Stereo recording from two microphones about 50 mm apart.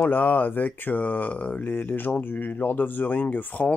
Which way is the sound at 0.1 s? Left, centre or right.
Left.